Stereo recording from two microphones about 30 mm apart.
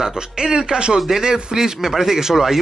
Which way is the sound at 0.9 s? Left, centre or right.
Centre.